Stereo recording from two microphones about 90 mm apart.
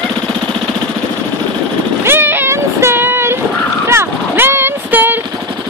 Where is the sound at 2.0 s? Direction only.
25° right (ahead or behind).